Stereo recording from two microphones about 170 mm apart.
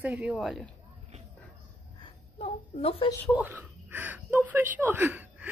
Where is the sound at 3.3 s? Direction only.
10° right (ahead or behind).